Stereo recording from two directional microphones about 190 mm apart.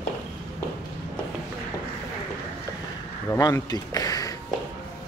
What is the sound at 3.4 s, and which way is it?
Speech, 20° left (ahead or behind).